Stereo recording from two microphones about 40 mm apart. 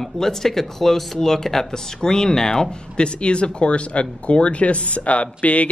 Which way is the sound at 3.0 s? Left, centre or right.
Left.